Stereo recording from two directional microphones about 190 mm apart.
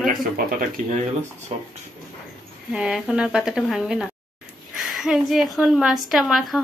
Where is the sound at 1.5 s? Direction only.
35° right (ahead or behind).